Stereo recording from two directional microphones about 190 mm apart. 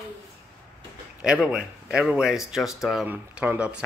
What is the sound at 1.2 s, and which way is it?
Speech, 5° right (ahead or behind).